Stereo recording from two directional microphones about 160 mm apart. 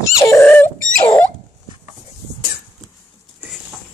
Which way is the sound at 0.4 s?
10° left (ahead or behind).